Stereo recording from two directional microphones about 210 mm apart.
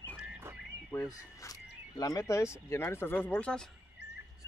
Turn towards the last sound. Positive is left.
turn(degrees=5)  # may be behind; listen again after turning